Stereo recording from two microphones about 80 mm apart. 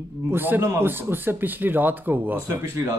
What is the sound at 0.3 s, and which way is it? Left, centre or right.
Speech, right.